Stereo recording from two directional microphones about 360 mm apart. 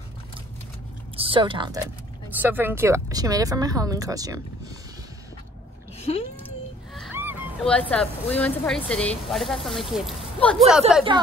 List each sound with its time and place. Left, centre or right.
1.1 s speech: centre
5.9 s a sound: centre
6.9 s speech: centre